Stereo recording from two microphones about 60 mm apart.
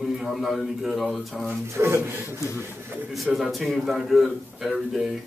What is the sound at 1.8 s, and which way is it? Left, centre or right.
Speech, right.